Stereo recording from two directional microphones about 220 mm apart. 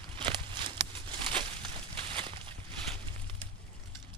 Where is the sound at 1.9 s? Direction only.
25° right (ahead or behind).